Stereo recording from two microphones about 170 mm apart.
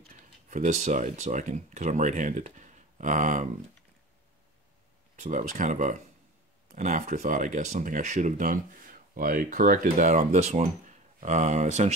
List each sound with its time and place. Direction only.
0.1 s speech: 45° right (ahead or behind)
5.2 s speech: 50° right (ahead or behind)